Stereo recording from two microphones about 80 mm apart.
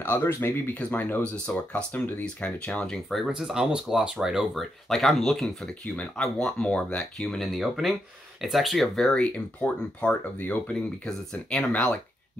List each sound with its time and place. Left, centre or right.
0.0 s speech: left
3.3 s speech: centre